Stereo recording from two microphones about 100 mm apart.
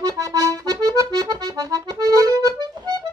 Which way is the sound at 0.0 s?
35° right (ahead or behind).